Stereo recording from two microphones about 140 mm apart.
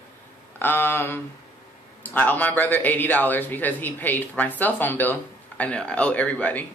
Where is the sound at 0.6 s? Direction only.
15° left (ahead or behind).